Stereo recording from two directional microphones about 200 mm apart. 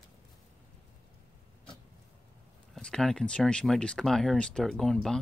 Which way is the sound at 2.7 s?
5° left (ahead or behind).